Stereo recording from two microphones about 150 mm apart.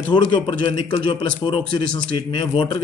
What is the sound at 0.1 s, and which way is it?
Speech, 35° left (ahead or behind).